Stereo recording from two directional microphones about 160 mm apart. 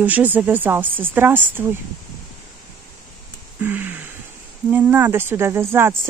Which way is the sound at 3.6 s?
10° right (ahead or behind).